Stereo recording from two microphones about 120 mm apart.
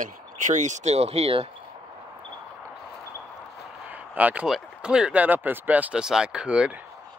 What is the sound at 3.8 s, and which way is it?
Speech, 15° right (ahead or behind).